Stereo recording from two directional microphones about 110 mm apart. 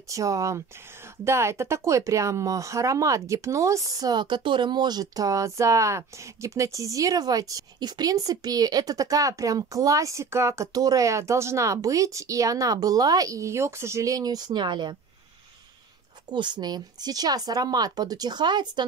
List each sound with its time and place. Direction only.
0.1 s speech: 30° right (ahead or behind)
16.3 s speech: 45° right (ahead or behind)